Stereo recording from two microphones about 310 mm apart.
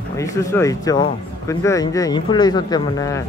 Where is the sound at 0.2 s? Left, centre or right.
Centre.